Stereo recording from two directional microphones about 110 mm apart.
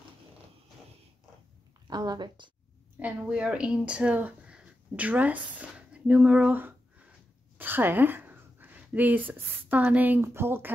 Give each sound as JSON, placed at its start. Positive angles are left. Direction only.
{"t": 1.9, "sound": "a woman's voice", "side_deg": -35}
{"t": 3.0, "sound": "speech", "side_deg": -10}
{"t": 5.6, "sound": "a sound", "side_deg": -10}